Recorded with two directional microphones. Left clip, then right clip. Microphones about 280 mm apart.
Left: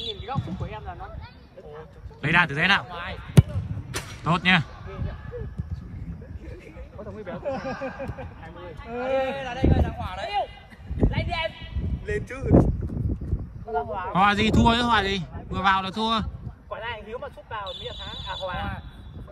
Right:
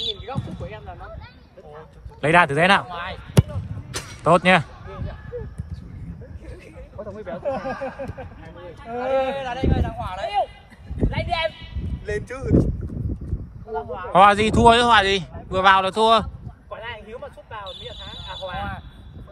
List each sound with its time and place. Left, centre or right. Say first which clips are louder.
0.2 s a sound: even; centre
2.2 s speech: right 5 dB; centre
2.9 s a man's voice: right 4 dB; centre
3.9 s a sound: right 9 dB; centre
7.0 s speech: right 4 dB; centre
7.4 s speech: right 4 dB; right
8.9 s a man's voice: right 3 dB; centre
11.0 s a sound: right 4 dB; centre
12.1 s speech: even; centre
13.7 s speech: left 1 dB; left
14.1 s speech: right 7 dB; centre
16.6 s a sound: left 1 dB; centre